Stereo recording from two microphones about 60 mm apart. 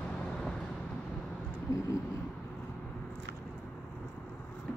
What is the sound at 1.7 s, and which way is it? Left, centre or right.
Vehicle, left.